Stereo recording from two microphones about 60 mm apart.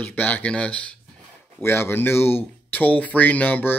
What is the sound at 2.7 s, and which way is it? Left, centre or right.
Speech, left.